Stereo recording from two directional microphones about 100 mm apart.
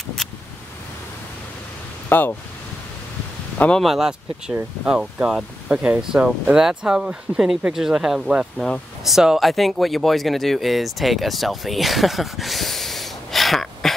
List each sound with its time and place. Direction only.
2.0 s speech: 20° left (ahead or behind)
3.5 s speech: 15° left (ahead or behind)
3.8 s speech: 5° right (ahead or behind)